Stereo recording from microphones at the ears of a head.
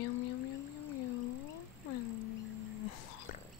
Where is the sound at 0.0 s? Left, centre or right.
Left.